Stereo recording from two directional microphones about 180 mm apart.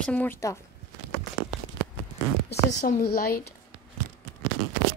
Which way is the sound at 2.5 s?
60° left (ahead or behind).